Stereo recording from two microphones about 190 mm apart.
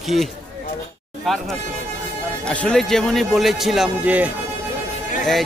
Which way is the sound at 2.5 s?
5° left (ahead or behind).